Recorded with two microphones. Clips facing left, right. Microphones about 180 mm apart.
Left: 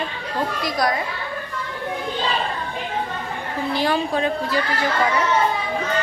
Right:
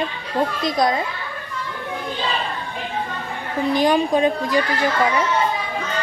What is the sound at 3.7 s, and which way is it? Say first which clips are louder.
Speech: right 4 dB; 15° right (ahead or behind).